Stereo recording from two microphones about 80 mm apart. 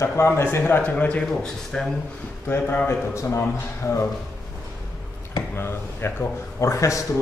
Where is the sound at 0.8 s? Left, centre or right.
Centre.